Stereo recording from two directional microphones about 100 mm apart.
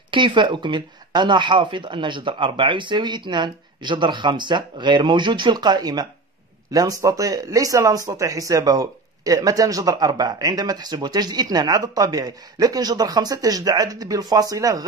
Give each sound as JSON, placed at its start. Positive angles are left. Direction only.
{"t": 0.1, "sound": "speech", "side_deg": -55}